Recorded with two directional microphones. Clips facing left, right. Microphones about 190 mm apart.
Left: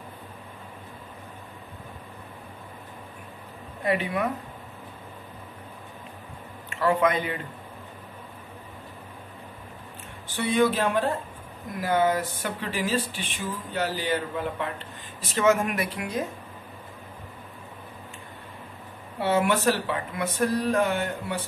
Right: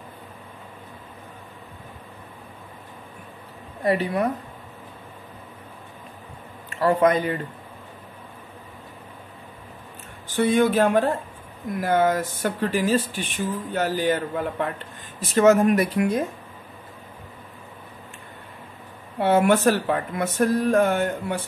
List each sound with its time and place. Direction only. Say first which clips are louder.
3.8 s a woman's voice: right 4 dB; 40° right (ahead or behind)
6.7 s speech: right 4 dB; 40° right (ahead or behind)
10.3 s speech: right 4 dB; 50° right (ahead or behind)
19.1 s speech: right 5 dB; 50° right (ahead or behind)